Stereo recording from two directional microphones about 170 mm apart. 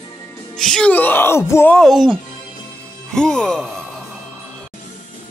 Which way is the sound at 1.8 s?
Centre (ahead or behind).